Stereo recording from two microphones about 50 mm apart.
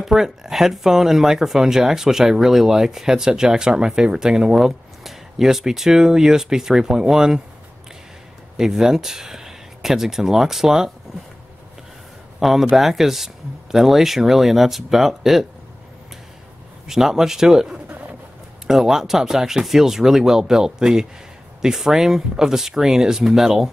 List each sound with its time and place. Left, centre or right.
0.0 s speech: centre
8.5 s speech: centre
12.4 s speech: centre
16.8 s speech: centre